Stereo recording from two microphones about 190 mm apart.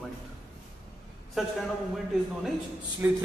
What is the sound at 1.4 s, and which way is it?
Speech, centre (ahead or behind).